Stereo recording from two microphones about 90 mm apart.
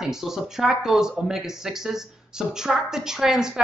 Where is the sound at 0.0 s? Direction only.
5° right (ahead or behind).